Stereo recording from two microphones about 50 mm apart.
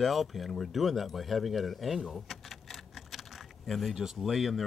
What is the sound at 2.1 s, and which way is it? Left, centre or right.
Keys jangling, centre.